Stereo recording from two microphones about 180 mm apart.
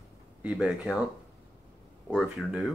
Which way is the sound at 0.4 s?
5° right (ahead or behind).